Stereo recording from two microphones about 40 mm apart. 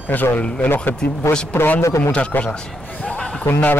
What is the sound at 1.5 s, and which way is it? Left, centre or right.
Speech, left.